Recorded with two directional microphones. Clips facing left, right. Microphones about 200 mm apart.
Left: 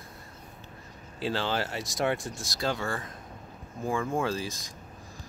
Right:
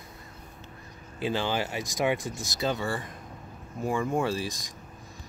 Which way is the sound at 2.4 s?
Centre (ahead or behind).